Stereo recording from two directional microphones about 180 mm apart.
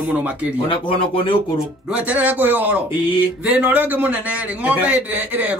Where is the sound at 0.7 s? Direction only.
30° left (ahead or behind).